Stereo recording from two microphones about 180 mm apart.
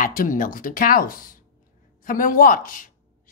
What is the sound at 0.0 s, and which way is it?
Speech, 45° left (ahead or behind).